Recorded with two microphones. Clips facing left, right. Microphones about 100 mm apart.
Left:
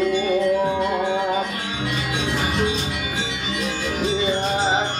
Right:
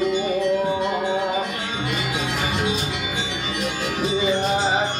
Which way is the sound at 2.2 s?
5° right (ahead or behind).